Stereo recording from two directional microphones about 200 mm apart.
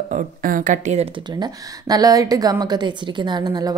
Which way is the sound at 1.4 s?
20° right (ahead or behind).